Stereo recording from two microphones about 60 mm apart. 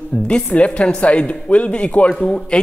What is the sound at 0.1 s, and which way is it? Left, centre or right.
Speech, centre.